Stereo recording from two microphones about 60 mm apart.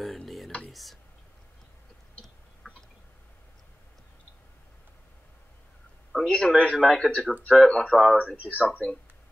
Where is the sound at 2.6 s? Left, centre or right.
Left.